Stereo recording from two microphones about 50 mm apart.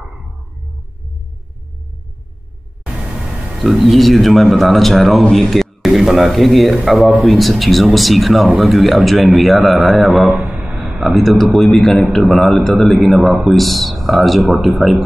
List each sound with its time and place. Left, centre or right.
2.9 s vehicle: centre
3.5 s speech: centre
11.1 s a man's voice: centre